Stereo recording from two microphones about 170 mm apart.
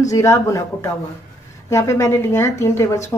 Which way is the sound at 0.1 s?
20° left (ahead or behind).